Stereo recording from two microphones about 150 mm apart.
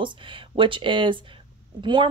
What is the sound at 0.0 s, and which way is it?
Speech, 35° right (ahead or behind).